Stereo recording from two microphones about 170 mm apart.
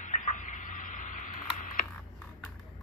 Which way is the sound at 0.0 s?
45° left (ahead or behind).